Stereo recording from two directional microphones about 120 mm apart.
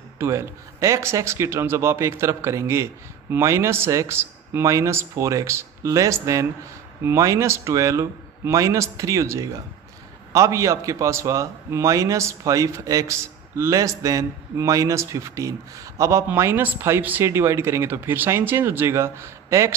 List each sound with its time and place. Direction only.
0.2 s speech: 25° right (ahead or behind)